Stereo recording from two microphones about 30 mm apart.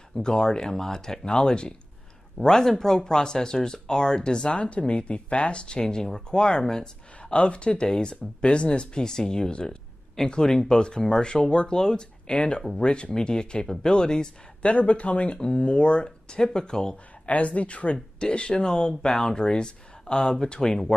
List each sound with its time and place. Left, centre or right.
0.1 s speech: left
2.4 s speech: centre
14.6 s speech: left
15.3 s speech: left
17.3 s speech: left
18.2 s speech: left